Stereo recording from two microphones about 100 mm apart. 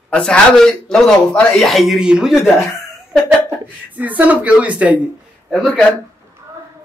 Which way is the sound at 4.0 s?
15° right (ahead or behind).